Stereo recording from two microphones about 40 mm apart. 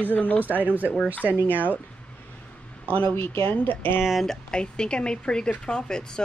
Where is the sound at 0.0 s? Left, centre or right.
Left.